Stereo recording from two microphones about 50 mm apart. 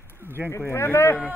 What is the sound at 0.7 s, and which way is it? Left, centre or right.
Speech, left.